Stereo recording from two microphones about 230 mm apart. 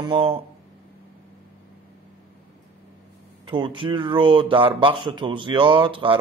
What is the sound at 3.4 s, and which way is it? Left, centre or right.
Speech, right.